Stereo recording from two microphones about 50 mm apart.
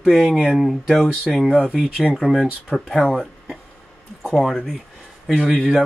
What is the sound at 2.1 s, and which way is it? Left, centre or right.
Speech, centre.